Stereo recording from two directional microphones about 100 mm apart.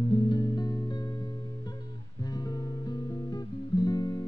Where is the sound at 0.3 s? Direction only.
45° left (ahead or behind).